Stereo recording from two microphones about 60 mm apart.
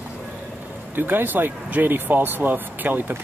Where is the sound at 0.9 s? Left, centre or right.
Right.